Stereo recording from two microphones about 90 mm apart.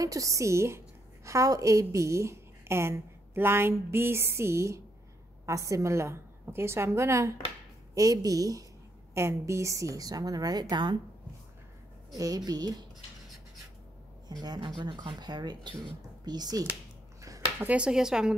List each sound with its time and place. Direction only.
0.0 s a woman's voice: 40° right (ahead or behind); by 11.0 s 55° right (ahead or behind)
12.2 s a woman's voice: 45° right (ahead or behind)
14.4 s a woman's voice: 50° right (ahead or behind)
14.8 s a woman's voice: 65° right (ahead or behind); by 16.6 s 50° right (ahead or behind)
17.6 s speech: 15° right (ahead or behind)